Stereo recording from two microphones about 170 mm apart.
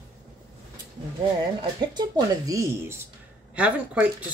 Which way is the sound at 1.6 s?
25° right (ahead or behind).